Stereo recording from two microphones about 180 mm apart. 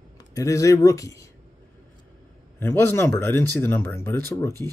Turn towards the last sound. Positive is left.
turn(degrees=15)  # may be behind; listen again after turning